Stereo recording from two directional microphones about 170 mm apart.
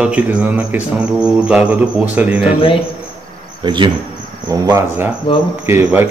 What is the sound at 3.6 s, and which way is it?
Speech, 25° right (ahead or behind).